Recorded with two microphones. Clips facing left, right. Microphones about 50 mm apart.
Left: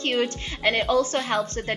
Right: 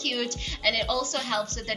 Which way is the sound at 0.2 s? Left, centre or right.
Left.